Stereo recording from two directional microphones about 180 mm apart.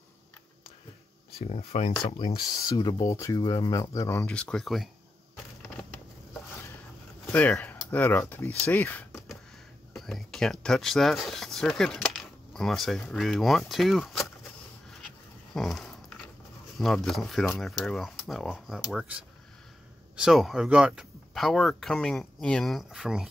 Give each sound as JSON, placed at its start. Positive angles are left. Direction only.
{"t": 1.5, "sound": "speech", "side_deg": 35}
{"t": 4.3, "sound": "speech", "side_deg": 5}
{"t": 7.2, "sound": "speech", "side_deg": 5}
{"t": 9.9, "sound": "speech", "side_deg": 0}
{"t": 15.5, "sound": "speech", "side_deg": 0}